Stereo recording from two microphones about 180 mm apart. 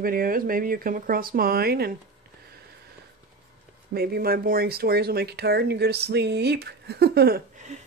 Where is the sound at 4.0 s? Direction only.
60° right (ahead or behind).